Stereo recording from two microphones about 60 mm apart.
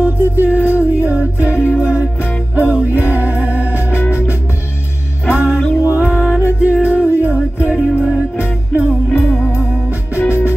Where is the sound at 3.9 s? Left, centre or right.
Left.